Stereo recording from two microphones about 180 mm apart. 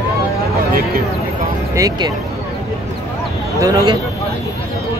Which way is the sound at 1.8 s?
20° right (ahead or behind).